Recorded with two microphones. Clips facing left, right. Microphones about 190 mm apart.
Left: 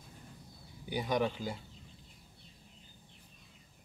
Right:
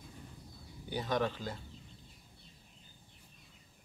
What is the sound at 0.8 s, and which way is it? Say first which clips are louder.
Speech: left 1 dB; 10° left (ahead or behind).